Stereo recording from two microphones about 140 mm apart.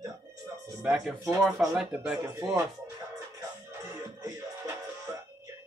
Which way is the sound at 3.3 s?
20° right (ahead or behind).